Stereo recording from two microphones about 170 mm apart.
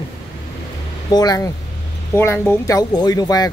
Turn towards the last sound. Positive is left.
turn(degrees=20)  # may be behind; listen again after turning